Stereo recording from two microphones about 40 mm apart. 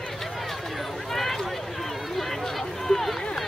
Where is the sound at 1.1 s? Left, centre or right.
Centre.